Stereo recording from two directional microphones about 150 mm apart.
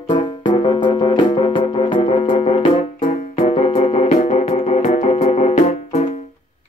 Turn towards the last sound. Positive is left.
turn(degrees=45)  # may be behind; listen again after turning